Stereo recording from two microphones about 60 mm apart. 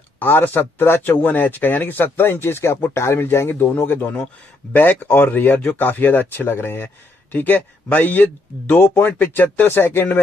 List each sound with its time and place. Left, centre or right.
0.2 s speech: left